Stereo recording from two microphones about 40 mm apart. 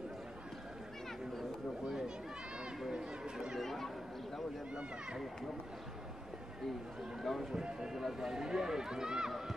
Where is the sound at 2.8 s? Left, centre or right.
Centre.